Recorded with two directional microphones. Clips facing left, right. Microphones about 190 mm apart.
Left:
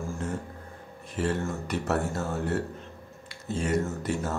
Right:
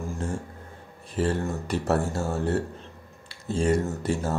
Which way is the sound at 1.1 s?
35° right (ahead or behind).